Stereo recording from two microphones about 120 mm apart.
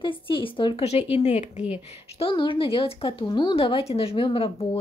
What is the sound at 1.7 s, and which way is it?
A woman's voice, 50° left (ahead or behind).